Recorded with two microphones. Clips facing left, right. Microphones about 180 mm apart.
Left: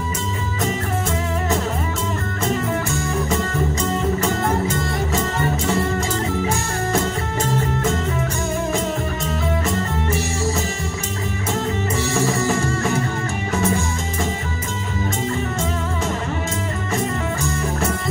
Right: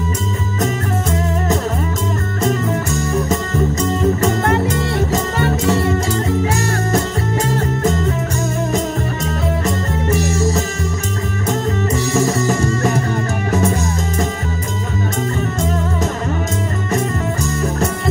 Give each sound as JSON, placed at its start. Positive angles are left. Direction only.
{"t": 4.8, "sound": "music", "side_deg": -70}
{"t": 10.0, "sound": "music", "side_deg": -40}
{"t": 12.1, "sound": "music", "side_deg": -40}